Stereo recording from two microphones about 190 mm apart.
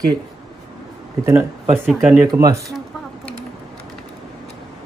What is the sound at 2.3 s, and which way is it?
Speech, 15° right (ahead or behind).